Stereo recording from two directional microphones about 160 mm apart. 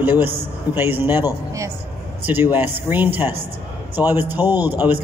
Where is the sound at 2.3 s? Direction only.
10° right (ahead or behind).